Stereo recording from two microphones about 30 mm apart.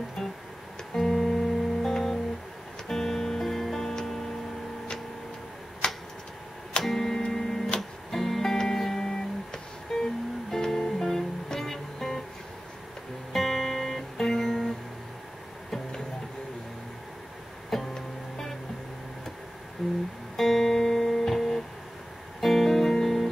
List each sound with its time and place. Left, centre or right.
0.2 s music: centre
5.8 s a sound: left
6.8 s a sound: centre
7.1 s tick-tock: centre
8.1 s music: centre
13.3 s guitar: centre
17.6 s music: centre
19.8 s music: centre
20.3 s music: centre